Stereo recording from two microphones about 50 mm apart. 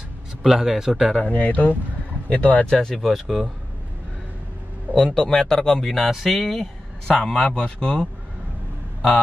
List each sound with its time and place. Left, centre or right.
0.4 s speech: centre
1.2 s speech: left
2.6 s speech: centre
3.0 s speech: centre
4.9 s speech: centre